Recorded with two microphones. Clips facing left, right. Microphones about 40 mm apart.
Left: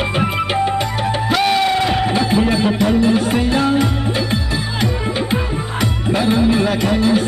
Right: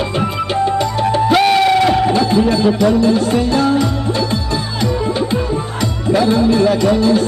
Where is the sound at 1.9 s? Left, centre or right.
Left.